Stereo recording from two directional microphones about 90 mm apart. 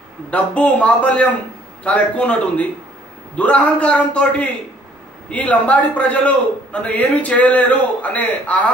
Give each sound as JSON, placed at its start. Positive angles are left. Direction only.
{"t": 0.3, "sound": "a man's voice", "side_deg": 15}